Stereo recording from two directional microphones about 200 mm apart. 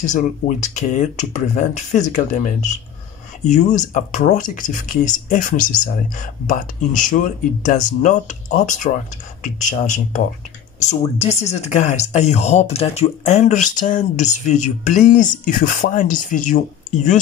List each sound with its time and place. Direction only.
0.0 s speech: 40° left (ahead or behind)